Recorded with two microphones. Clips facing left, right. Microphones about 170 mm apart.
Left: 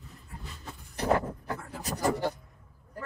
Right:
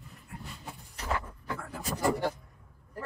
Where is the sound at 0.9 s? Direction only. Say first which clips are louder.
Left 8 dB; 40° left (ahead or behind).